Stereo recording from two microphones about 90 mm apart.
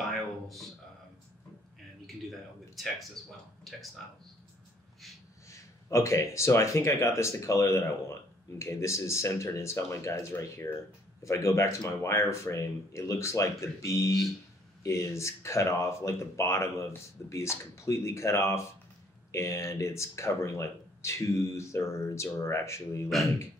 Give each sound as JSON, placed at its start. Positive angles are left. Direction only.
{"t": 2.7, "sound": "speech", "side_deg": 0}
{"t": 5.5, "sound": "speech", "side_deg": 35}